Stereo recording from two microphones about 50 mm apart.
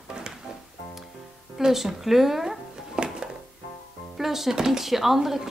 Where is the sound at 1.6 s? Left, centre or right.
Centre.